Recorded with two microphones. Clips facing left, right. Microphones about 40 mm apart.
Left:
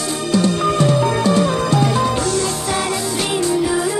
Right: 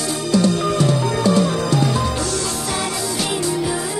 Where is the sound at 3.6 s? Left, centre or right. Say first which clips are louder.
Left 4 dB; centre.